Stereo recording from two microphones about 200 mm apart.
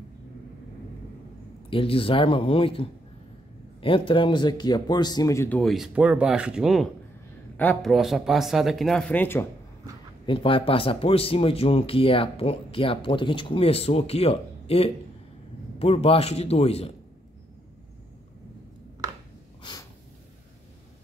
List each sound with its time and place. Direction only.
1.7 s speech: 25° left (ahead or behind)
5.6 s a man's voice: centre (ahead or behind)
10.2 s a man's voice: 25° left (ahead or behind)